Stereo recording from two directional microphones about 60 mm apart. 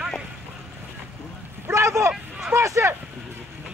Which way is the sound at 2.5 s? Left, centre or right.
Right.